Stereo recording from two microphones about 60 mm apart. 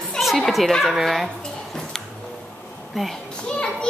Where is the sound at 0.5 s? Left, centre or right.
Centre.